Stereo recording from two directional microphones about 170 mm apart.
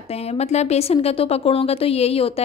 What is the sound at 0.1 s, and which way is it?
A woman's voice, 40° left (ahead or behind).